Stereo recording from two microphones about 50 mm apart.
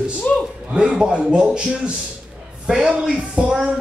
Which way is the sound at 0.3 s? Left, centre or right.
Left.